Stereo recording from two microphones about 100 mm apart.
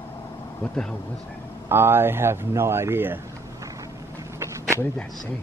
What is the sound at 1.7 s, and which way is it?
Speech, 25° right (ahead or behind).